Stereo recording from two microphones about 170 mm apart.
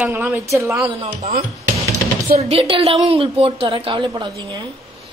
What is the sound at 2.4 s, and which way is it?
A woman's voice, 35° right (ahead or behind).